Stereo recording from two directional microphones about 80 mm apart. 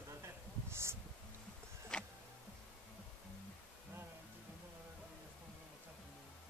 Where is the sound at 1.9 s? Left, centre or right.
Centre.